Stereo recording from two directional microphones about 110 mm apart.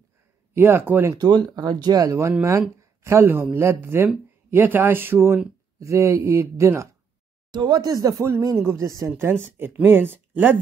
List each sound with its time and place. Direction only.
0.6 s speech: 20° right (ahead or behind)
1.1 s speech: 35° right (ahead or behind)
7.5 s speech: 40° right (ahead or behind); by 10.6 s 20° right (ahead or behind)